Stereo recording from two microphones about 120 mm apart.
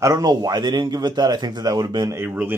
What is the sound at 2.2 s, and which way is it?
Speech, 15° right (ahead or behind).